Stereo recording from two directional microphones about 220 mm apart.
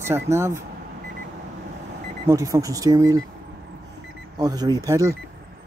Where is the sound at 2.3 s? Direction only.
15° right (ahead or behind).